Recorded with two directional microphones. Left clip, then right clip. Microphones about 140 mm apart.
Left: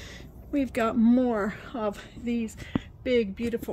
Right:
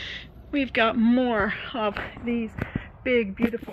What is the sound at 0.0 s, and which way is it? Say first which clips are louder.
Speech: right 9 dB; 25° left (ahead or behind).